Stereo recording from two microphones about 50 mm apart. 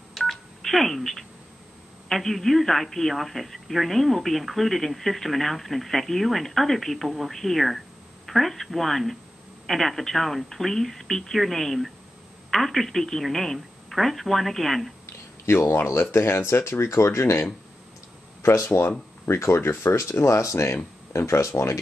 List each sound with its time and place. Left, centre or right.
0.1 s telephone dialing: centre
2.0 s speech: centre
15.4 s speech: left
18.4 s speech: left
18.8 s speech: left